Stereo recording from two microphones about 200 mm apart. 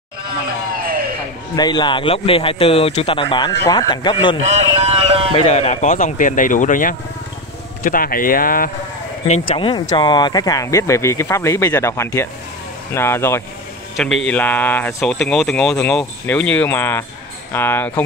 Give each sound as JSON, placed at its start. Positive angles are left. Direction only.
{"t": 1.6, "sound": "a man's voice", "side_deg": 20}
{"t": 4.4, "sound": "speech", "side_deg": -35}
{"t": 5.3, "sound": "speech", "side_deg": 30}
{"t": 9.5, "sound": "a man's voice", "side_deg": 25}
{"t": 13.9, "sound": "speech", "side_deg": 0}